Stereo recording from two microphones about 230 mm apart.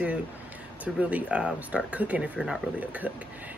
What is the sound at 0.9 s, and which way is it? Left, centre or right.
A woman's voice, centre.